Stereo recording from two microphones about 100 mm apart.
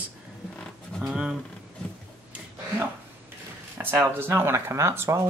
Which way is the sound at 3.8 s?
20° right (ahead or behind).